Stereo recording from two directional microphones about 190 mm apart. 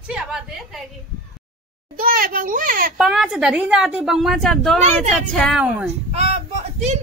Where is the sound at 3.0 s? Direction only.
Centre (ahead or behind).